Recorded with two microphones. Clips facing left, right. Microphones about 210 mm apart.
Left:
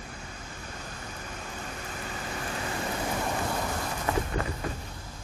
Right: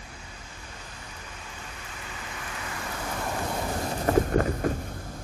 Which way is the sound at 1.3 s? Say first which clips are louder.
Left 5 dB; 45° left (ahead or behind).